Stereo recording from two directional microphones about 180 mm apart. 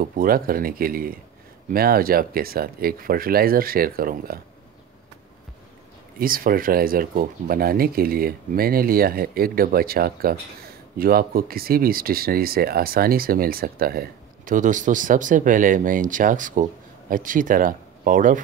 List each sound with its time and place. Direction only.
0.0 s speech: 55° right (ahead or behind)
6.1 s speech: 50° right (ahead or behind)